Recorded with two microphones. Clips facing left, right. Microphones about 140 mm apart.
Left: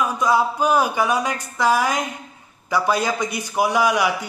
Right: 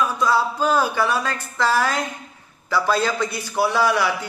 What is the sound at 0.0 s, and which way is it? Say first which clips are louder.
Speech: left 1 dB; 15° left (ahead or behind).